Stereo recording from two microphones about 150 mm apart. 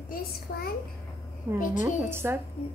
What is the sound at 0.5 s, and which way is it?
Speech, 60° left (ahead or behind).